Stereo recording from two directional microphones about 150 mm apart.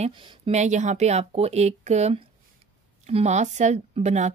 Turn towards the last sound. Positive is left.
turn(degrees=-50)  # may be behind; listen again after turning